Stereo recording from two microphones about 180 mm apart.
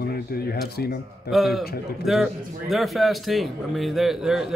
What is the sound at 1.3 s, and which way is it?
A man's voice, centre (ahead or behind).